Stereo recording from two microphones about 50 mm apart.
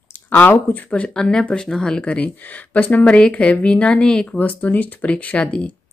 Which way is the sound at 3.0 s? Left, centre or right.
Left.